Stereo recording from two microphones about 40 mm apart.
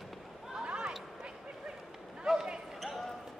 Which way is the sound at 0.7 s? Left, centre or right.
Centre.